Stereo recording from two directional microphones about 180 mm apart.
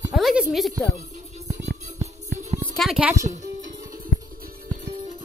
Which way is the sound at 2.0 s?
40° right (ahead or behind).